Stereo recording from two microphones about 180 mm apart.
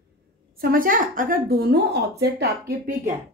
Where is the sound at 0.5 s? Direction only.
50° right (ahead or behind).